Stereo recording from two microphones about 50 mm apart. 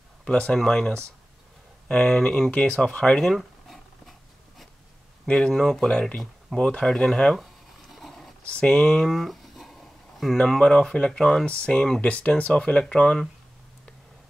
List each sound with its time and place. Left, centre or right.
0.2 s speech: centre
2.5 s speech: centre
3.3 s a sound: centre
5.5 s speech: centre
7.9 s roaring cats: centre
8.6 s a sound: centre
10.6 s speech: centre
11.4 s speech: left